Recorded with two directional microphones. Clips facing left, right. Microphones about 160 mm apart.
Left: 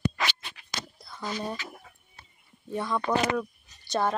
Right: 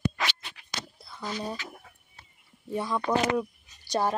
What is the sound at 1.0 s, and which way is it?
Speech, centre (ahead or behind).